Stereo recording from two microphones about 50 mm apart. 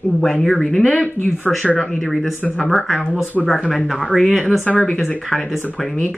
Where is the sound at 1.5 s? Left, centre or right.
Centre.